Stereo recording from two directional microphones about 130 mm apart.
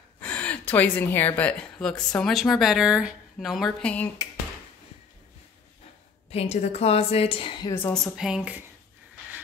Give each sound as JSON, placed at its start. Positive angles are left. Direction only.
{"t": 0.2, "sound": "speech", "side_deg": 10}
{"t": 6.3, "sound": "a woman's voice", "side_deg": 55}
{"t": 7.9, "sound": "a woman's voice", "side_deg": 0}